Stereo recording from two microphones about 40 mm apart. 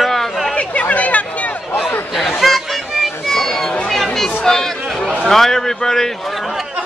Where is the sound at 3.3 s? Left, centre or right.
Centre.